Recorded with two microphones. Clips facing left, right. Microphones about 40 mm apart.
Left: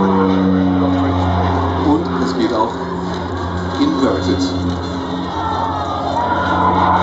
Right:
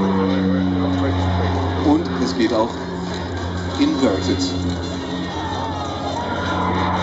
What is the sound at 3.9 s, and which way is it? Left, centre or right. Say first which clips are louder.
Speech: left 3 dB; left.